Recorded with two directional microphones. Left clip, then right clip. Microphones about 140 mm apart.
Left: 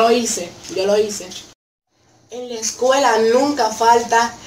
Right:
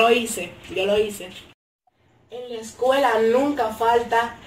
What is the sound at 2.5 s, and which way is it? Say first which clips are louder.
Speech: left 4 dB; 10° left (ahead or behind).